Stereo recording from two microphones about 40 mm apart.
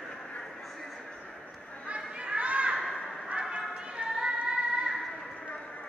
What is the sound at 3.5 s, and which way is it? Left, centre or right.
Music, right.